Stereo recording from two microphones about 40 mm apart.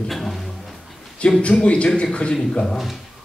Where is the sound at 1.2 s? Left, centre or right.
Left.